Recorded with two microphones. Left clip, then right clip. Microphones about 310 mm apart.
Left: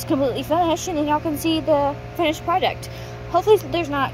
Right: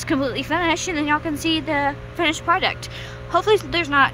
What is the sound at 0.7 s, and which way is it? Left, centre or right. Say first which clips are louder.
Speech: even; centre.